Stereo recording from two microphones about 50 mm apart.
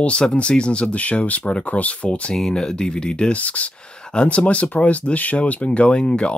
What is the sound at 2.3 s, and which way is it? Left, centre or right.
Speech, centre.